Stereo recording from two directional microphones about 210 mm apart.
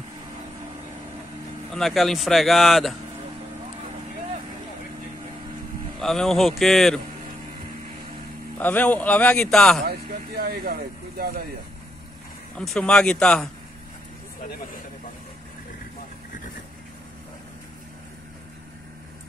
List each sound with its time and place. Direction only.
1.7 s speech: centre (ahead or behind)
5.9 s speech: centre (ahead or behind)
8.5 s speech: 5° left (ahead or behind)
9.8 s speech: 45° right (ahead or behind)
12.5 s speech: 5° left (ahead or behind)